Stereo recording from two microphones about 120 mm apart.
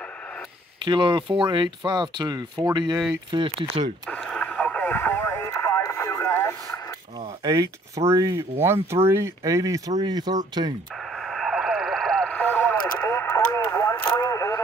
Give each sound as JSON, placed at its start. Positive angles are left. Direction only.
{"t": 0.8, "sound": "speech", "side_deg": -40}
{"t": 4.1, "sound": "radio", "side_deg": 5}
{"t": 7.2, "sound": "speech", "side_deg": -30}
{"t": 11.1, "sound": "radio", "side_deg": 0}
{"t": 13.0, "sound": "radio", "side_deg": 20}